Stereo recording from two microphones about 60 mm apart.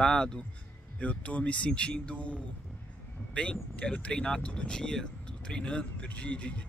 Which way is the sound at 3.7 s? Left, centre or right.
Left.